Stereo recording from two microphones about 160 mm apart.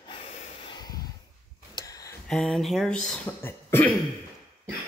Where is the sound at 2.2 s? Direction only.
5° left (ahead or behind).